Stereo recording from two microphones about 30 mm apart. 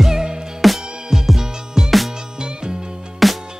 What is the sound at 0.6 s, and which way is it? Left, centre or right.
Music, centre.